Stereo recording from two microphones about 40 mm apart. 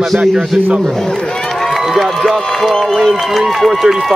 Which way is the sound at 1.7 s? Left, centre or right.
Centre.